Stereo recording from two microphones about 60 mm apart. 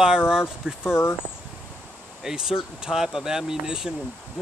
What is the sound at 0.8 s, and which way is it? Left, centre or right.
Speech, left.